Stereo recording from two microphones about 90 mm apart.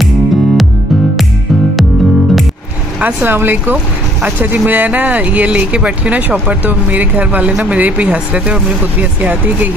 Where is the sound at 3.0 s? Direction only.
20° right (ahead or behind).